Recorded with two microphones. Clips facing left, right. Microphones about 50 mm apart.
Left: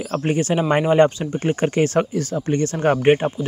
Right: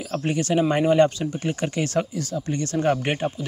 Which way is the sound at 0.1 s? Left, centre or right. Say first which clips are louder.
Left 2 dB; left.